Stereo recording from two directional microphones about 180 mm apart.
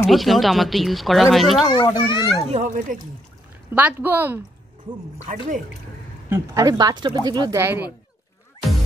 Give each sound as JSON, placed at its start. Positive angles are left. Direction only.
{"t": 0.0, "sound": "speech", "side_deg": 0}
{"t": 1.7, "sound": "a child's voice", "side_deg": 25}
{"t": 2.5, "sound": "speech", "side_deg": -45}
{"t": 3.7, "sound": "speech", "side_deg": -10}
{"t": 5.2, "sound": "speech", "side_deg": -45}
{"t": 6.2, "sound": "speech", "side_deg": -15}